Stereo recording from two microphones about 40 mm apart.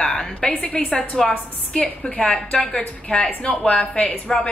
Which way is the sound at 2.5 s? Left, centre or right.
Left.